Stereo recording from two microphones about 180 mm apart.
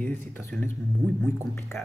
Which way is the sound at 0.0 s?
10° left (ahead or behind).